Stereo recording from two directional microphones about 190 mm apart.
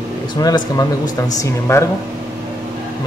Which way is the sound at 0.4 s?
20° left (ahead or behind).